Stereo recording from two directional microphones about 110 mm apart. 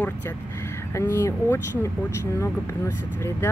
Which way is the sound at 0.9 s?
25° left (ahead or behind).